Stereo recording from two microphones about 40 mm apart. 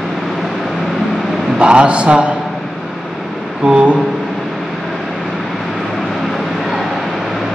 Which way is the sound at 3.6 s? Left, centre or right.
Right.